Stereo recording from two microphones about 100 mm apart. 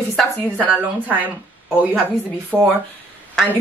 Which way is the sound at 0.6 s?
15° right (ahead or behind).